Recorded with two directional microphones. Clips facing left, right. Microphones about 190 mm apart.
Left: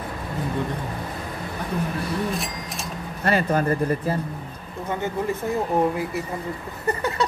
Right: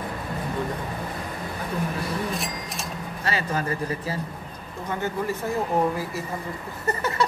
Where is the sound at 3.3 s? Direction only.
55° left (ahead or behind).